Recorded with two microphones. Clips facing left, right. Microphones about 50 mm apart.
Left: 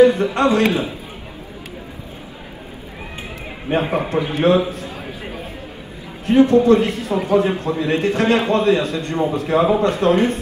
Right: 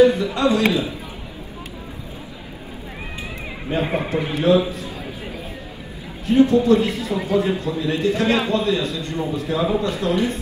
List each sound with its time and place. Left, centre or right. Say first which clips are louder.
0.0 s a man's voice: left 2 dB; left
3.7 s a man's voice: left 3 dB; left